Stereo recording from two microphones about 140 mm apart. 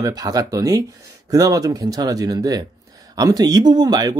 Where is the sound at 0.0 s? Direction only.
25° right (ahead or behind).